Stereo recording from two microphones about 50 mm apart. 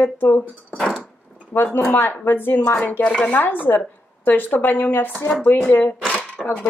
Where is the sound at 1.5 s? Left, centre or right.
Left.